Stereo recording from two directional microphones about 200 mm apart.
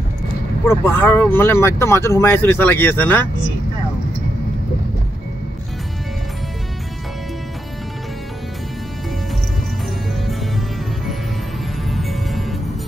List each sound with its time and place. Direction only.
0.7 s speech: 10° left (ahead or behind)
11.9 s music: centre (ahead or behind)